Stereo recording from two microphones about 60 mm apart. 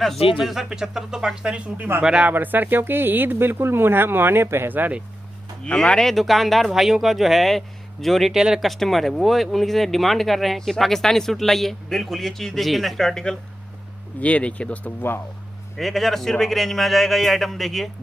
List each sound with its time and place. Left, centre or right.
0.0 s speech: centre
2.3 s speech: right
5.6 s speech: centre
8.6 s speech: centre
14.2 s speech: left
15.8 s speech: centre